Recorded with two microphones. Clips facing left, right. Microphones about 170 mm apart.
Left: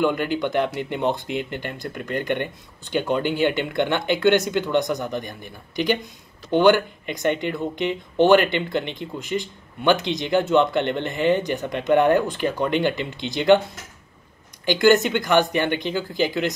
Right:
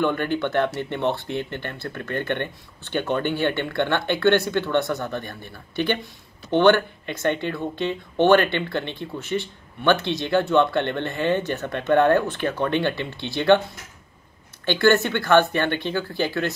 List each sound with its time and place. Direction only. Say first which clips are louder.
0.0 s speech: left 1 dB; 10° left (ahead or behind)
14.7 s speech: left 2 dB; 15° left (ahead or behind)